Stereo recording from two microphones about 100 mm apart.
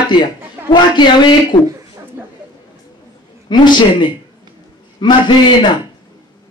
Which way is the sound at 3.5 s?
50° left (ahead or behind).